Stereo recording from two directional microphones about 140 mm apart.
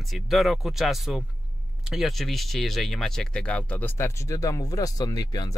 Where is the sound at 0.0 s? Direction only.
Centre (ahead or behind).